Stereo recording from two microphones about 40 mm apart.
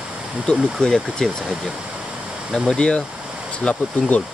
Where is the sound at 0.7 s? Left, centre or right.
Centre.